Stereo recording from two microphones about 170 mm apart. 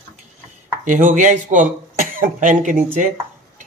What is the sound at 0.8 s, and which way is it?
A man's voice, 45° right (ahead or behind).